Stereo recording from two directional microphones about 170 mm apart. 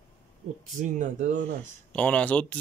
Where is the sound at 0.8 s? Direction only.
45° right (ahead or behind).